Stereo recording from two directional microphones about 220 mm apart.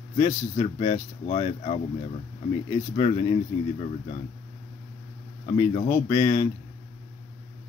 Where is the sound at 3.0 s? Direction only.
25° left (ahead or behind).